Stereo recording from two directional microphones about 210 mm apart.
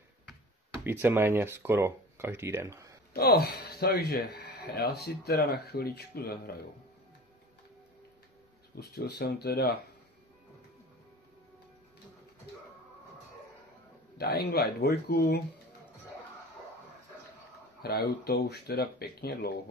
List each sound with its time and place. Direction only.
0.8 s speech: 10° right (ahead or behind)
3.1 s speech: 45° left (ahead or behind)
8.7 s speech: 50° left (ahead or behind)
14.1 s speech: 50° left (ahead or behind)
17.8 s speech: 45° left (ahead or behind)